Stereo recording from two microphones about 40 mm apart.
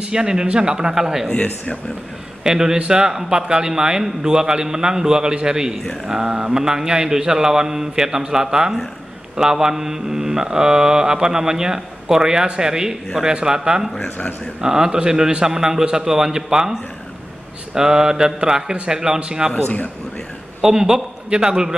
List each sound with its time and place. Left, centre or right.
0.0 s mantra: centre
1.3 s speech: left
2.4 s mantra: centre
5.3 s a man's voice: centre
6.0 s mantra: centre
17.7 s mantra: centre
19.1 s a man's voice: right
20.6 s mantra: centre